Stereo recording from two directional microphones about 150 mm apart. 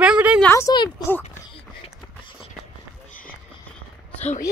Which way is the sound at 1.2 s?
45° left (ahead or behind).